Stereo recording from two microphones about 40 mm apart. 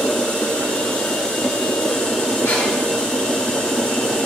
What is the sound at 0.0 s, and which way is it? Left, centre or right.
Vacuum cleaner, centre.